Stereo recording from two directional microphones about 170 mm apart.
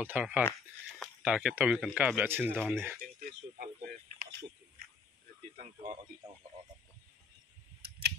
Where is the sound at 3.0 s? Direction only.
55° right (ahead or behind).